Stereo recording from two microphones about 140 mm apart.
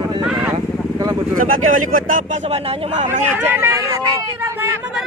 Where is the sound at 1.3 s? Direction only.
70° right (ahead or behind).